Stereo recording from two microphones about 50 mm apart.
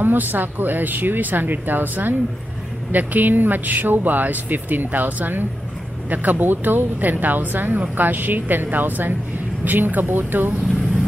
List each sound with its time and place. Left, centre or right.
0.0 s speech: right